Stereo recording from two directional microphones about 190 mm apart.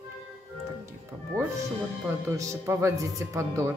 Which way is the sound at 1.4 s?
15° right (ahead or behind).